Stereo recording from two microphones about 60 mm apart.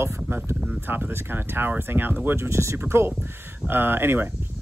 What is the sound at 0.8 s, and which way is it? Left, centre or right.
Speech, right.